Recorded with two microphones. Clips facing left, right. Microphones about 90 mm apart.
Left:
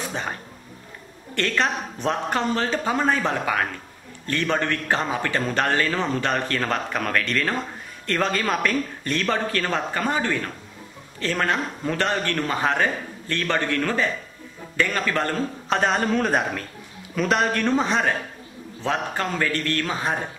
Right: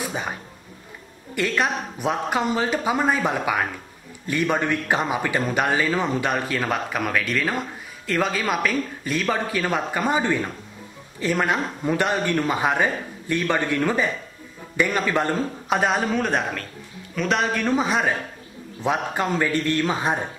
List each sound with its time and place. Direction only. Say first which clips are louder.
0.0 s a sound: right 1 dB; 5° right (ahead or behind)
1.3 s a man's voice: right 1 dB; 10° right (ahead or behind)
15.8 s a man's voice: left 1 dB; 5° right (ahead or behind)